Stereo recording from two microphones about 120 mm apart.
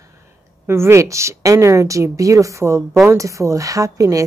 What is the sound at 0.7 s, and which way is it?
A woman's voice, 20° right (ahead or behind).